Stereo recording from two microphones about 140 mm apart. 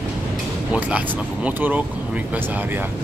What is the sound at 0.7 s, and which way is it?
Speech, 10° right (ahead or behind).